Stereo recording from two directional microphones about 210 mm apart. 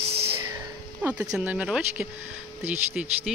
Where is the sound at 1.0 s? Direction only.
10° right (ahead or behind).